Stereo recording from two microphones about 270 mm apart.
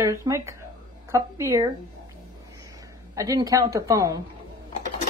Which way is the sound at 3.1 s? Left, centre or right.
Centre.